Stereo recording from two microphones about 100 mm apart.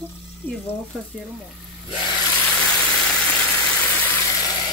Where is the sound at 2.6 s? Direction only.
10° left (ahead or behind).